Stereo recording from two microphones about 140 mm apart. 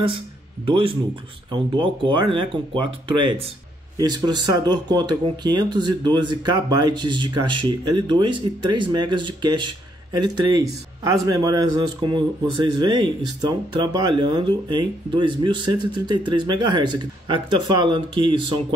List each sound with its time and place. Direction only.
0.7 s speech: 35° right (ahead or behind)